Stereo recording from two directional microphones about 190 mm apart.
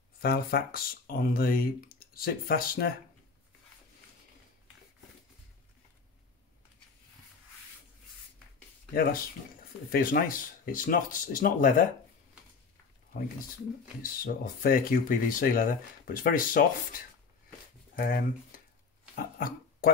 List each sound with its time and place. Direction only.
0.2 s speech: 55° left (ahead or behind)
9.8 s speech: 50° left (ahead or behind)
14.0 s speech: 50° left (ahead or behind)
17.9 s speech: 50° left (ahead or behind)
19.1 s dog: 50° left (ahead or behind)